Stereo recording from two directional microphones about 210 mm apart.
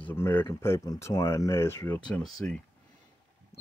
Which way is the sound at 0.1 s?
10° left (ahead or behind).